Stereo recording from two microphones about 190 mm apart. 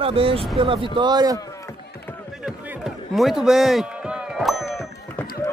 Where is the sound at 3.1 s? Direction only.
Centre (ahead or behind).